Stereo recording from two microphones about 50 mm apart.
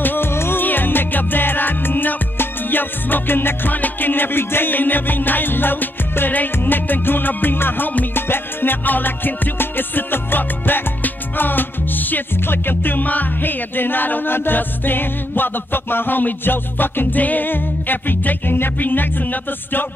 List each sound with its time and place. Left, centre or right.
0.0 s music: left
0.6 s music: left